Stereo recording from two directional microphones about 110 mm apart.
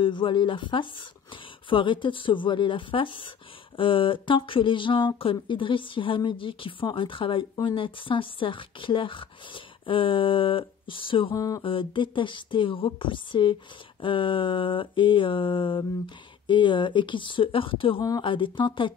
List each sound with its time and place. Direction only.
0.0 s speech: 50° left (ahead or behind)
11.3 s a sound: 30° left (ahead or behind)
11.6 s speech: 50° left (ahead or behind)